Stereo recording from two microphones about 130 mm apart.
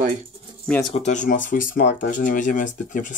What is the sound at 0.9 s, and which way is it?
Speech, 65° left (ahead or behind).